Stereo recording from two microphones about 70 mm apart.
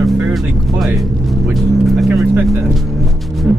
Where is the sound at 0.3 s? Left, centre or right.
Centre.